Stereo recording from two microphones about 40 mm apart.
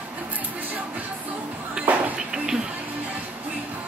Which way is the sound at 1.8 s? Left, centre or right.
Centre.